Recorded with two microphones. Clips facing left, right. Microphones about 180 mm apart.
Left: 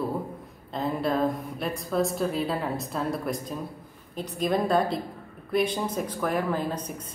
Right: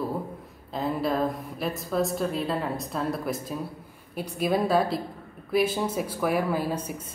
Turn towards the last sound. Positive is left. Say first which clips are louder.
# right 1 dB
turn(degrees=-10)  # may be behind; listen again after turning